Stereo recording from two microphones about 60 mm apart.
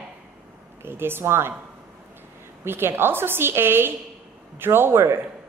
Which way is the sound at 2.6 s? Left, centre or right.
Right.